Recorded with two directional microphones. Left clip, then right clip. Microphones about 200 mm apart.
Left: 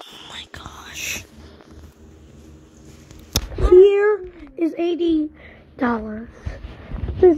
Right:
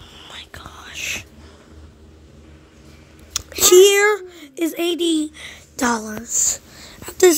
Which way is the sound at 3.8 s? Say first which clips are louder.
Even; 15° right (ahead or behind).